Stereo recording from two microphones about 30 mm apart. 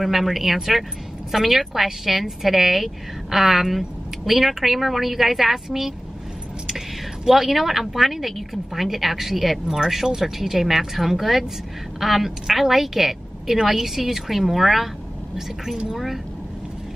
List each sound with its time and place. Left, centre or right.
0.0 s a woman's voice: centre
7.2 s a woman's voice: centre